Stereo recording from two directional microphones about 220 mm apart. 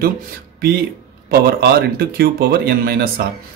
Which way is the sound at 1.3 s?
45° right (ahead or behind).